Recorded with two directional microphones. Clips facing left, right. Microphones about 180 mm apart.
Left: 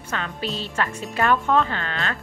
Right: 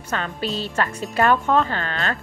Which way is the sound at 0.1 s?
40° right (ahead or behind).